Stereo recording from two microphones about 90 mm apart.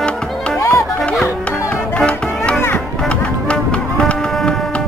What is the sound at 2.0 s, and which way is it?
Music, 15° left (ahead or behind).